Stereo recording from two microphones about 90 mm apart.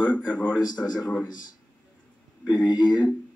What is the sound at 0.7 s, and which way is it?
Speech, 55° left (ahead or behind).